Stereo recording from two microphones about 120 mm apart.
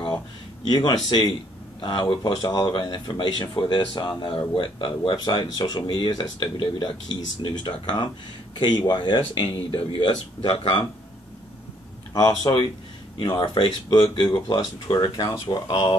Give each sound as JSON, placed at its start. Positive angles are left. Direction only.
{"t": 0.7, "sound": "speech", "side_deg": 35}
{"t": 12.1, "sound": "speech", "side_deg": 35}